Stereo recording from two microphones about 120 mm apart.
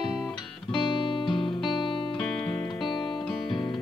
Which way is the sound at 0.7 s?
45° left (ahead or behind).